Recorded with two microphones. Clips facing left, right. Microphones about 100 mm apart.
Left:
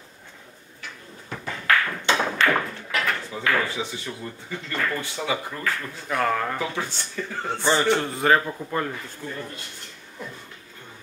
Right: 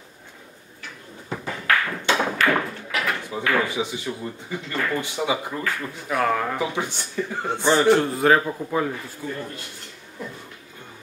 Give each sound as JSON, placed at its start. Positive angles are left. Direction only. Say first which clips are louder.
{"t": 1.3, "sound": "a sound", "louder": "right 4 dB", "side_deg": -10}
{"t": 2.0, "sound": "tap", "louder": "right 2 dB", "side_deg": -10}
{"t": 2.4, "sound": "speech", "louder": "right 1 dB", "side_deg": -10}
{"t": 5.8, "sound": "speech", "louder": "right 2 dB", "side_deg": -5}
{"t": 6.6, "sound": "speech", "louder": "right 3 dB", "side_deg": -15}
{"t": 7.8, "sound": "speech", "louder": "right 4 dB", "side_deg": -5}